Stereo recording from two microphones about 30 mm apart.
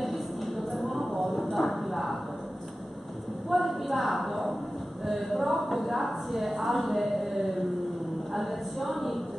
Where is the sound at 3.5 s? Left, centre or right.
Centre.